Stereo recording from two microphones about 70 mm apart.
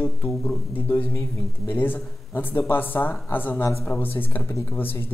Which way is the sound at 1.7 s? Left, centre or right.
Left.